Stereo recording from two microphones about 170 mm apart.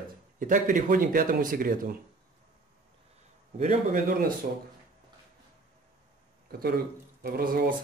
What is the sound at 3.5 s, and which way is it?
Speech, 50° right (ahead or behind).